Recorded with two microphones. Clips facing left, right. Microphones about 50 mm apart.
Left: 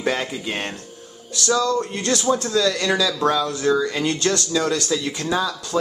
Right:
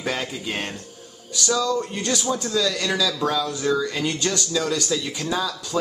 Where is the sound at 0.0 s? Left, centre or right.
Centre.